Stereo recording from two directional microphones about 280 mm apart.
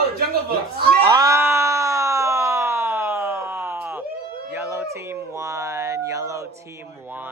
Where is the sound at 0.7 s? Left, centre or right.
Right.